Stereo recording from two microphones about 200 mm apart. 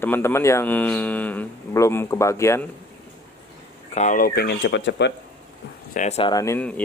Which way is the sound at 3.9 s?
40° left (ahead or behind).